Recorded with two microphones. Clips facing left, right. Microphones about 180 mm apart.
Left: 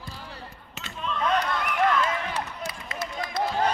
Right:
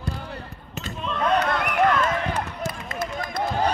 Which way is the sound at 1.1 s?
60° right (ahead or behind).